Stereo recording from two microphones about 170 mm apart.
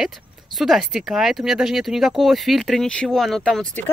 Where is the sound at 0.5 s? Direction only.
Centre (ahead or behind).